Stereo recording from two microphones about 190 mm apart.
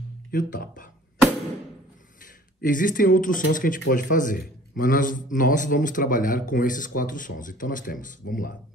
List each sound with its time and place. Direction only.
0.3 s a man's voice: 45° left (ahead or behind)
2.6 s a man's voice: 45° left (ahead or behind)